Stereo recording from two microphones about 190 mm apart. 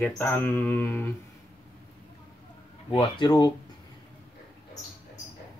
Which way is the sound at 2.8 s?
25° left (ahead or behind).